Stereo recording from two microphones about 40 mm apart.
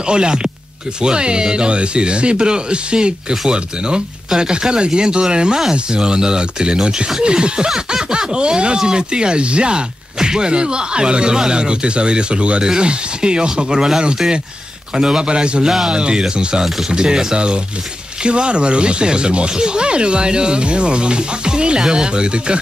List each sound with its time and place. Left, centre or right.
0.0 s speech: right
15.6 s speech: centre
15.9 s speech: right